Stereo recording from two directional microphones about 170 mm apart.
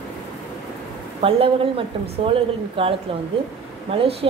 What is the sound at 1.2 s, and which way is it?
Speech, 35° right (ahead or behind).